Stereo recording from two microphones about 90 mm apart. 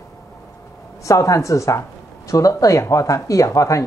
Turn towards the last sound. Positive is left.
turn(degrees=35)  # may be behind; listen again after turning